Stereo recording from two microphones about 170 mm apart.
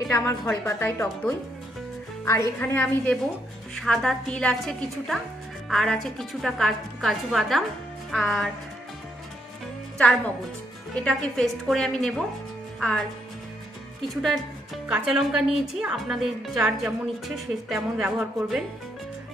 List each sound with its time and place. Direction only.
0.1 s a woman's voice: 15° left (ahead or behind); by 8.5 s centre (ahead or behind)
9.9 s a woman's voice: 5° left (ahead or behind)
14.0 s a woman's voice: centre (ahead or behind)